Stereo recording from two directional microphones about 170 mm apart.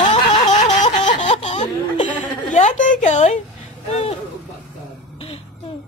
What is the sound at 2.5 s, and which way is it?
A woman's voice, 45° left (ahead or behind).